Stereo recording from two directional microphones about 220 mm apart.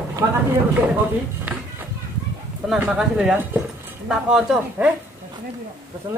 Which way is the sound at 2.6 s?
5° right (ahead or behind).